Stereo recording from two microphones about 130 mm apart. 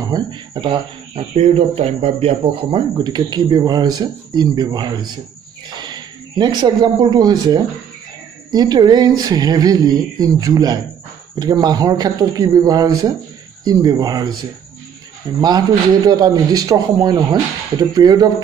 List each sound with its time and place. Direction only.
0.0 s speech: 35° right (ahead or behind)
1.3 s speech: 50° right (ahead or behind); by 18.3 s 30° right (ahead or behind)